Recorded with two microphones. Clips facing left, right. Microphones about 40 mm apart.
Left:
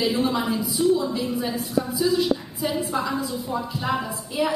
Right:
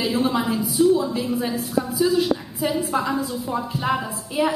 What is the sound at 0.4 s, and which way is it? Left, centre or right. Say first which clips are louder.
A woman's voice: right 3 dB; centre.